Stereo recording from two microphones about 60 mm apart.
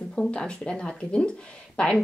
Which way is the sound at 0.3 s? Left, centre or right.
Centre.